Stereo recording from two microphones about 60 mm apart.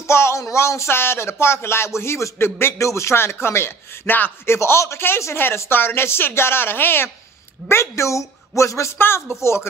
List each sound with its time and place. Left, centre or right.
0.0 s speech: left
2.8 s speech: left
4.5 s a woman's voice: left
8.9 s speech: left